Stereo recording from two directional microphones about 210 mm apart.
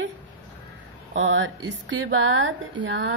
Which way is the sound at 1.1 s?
60° right (ahead or behind).